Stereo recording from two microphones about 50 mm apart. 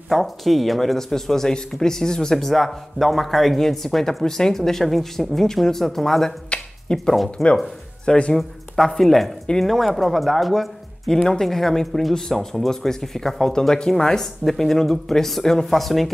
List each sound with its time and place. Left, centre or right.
0.1 s speech: centre
6.9 s speech: centre
7.4 s speech: centre
8.0 s speech: centre
8.4 s speech: centre